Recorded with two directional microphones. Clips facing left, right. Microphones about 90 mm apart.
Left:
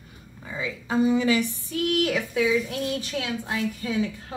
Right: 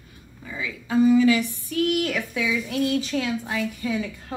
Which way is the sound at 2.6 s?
Centre (ahead or behind).